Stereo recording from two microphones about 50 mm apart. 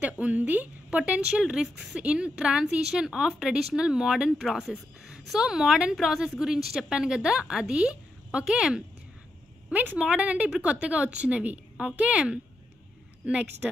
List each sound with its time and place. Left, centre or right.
0.0 s a woman's voice: right
1.3 s a woman's voice: centre
9.9 s a woman's voice: right